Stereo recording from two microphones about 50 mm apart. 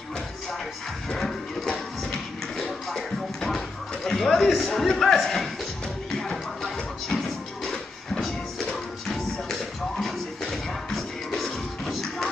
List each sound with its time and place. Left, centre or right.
1.1 s music: centre